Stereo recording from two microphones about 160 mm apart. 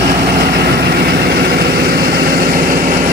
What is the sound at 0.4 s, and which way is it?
Vehicle, 75° right (ahead or behind).